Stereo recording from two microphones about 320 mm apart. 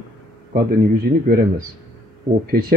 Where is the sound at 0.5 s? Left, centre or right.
Right.